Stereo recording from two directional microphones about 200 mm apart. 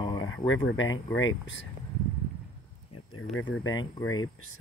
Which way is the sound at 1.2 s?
70° left (ahead or behind).